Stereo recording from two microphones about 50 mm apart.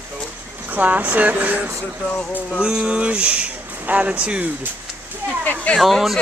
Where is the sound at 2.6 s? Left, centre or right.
Centre.